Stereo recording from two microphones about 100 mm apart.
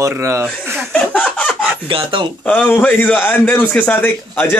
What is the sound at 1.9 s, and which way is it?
Speech, 60° right (ahead or behind).